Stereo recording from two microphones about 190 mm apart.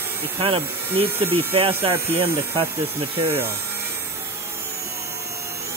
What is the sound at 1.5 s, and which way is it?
Speech, 30° right (ahead or behind).